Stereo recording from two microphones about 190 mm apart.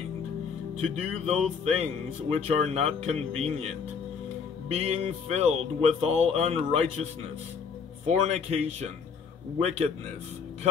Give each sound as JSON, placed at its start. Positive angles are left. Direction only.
{"t": 1.2, "sound": "speech", "side_deg": -35}